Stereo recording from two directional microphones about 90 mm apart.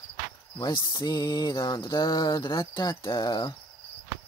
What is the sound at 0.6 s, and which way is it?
Mantra, 50° left (ahead or behind).